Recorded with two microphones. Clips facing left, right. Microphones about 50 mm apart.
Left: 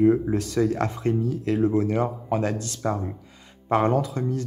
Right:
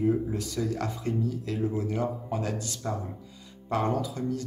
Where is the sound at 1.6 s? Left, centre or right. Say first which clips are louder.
Left 6 dB; left.